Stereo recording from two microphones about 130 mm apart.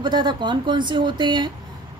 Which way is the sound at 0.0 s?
35° right (ahead or behind).